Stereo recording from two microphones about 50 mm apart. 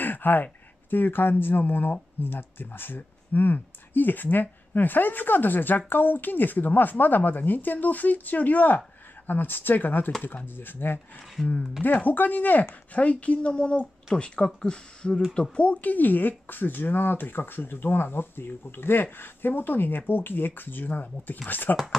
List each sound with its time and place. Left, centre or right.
0.0 s speech: left